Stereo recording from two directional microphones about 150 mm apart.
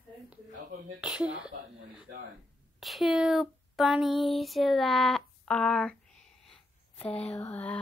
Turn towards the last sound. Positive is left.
turn(degrees=10)  # may be behind; listen again after turning